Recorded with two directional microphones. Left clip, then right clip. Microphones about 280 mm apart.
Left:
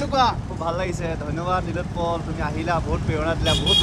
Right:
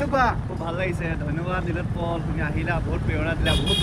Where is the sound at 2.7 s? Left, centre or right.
Left.